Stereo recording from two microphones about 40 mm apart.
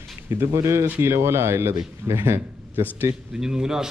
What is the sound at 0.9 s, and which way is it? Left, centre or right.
A man's voice, right.